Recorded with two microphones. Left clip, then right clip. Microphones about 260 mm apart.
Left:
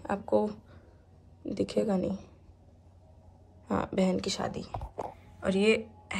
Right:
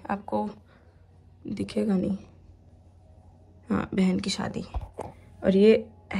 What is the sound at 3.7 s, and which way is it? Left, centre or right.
A woman's voice, centre.